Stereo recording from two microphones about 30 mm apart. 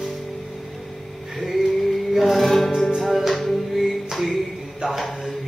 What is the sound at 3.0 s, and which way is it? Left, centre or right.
Music, centre.